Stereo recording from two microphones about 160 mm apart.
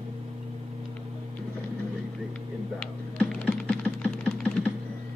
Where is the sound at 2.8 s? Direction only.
5° left (ahead or behind).